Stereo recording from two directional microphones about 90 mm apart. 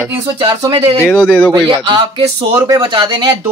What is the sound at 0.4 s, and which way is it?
Speech, 80° right.